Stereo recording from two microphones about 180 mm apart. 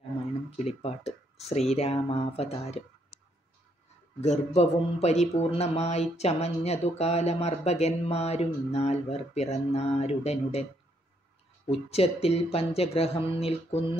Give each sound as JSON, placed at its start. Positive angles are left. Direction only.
{"t": 0.6, "sound": "speech", "side_deg": 35}
{"t": 3.1, "sound": "a sound", "side_deg": 60}
{"t": 4.2, "sound": "speech", "side_deg": 40}
{"t": 11.6, "sound": "speech", "side_deg": 35}